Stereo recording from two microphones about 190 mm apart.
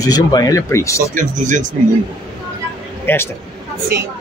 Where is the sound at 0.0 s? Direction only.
20° left (ahead or behind).